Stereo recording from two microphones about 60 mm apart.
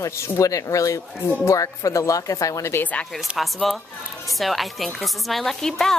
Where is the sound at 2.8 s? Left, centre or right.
Left.